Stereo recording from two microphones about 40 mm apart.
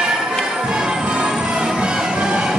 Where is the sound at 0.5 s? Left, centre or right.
Centre.